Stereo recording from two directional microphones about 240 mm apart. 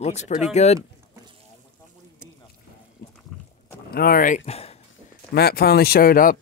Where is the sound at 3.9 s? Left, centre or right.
Left.